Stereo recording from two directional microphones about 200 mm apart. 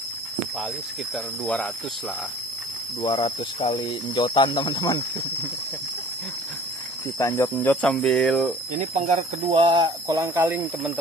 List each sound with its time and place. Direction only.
1.4 s speech: 5° left (ahead or behind)
3.0 s speech: 25° left (ahead or behind)
7.2 s speech: 15° left (ahead or behind)
8.7 s speech: 35° right (ahead or behind); by 10.9 s 10° right (ahead or behind)